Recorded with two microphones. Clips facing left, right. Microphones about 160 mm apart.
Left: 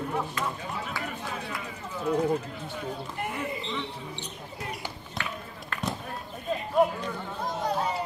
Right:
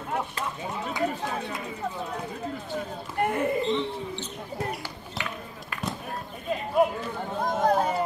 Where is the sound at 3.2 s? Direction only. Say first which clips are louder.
Right 11 dB; 50° right (ahead or behind).